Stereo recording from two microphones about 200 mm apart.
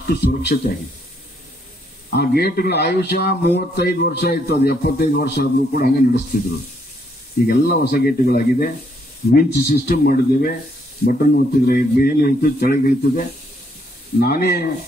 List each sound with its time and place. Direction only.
0.1 s speech: 55° left (ahead or behind)
2.0 s a man's voice: 50° left (ahead or behind)
7.4 s a man's voice: 50° left (ahead or behind)
14.2 s a man's voice: 50° left (ahead or behind)